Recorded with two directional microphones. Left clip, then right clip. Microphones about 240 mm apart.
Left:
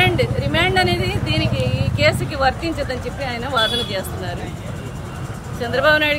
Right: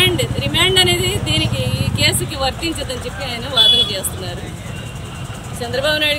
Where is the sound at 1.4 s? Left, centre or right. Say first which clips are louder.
Right 1 dB; left.